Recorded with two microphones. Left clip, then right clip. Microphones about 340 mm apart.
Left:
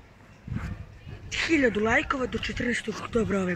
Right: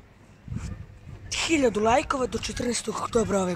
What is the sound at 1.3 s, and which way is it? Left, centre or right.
Speech, centre.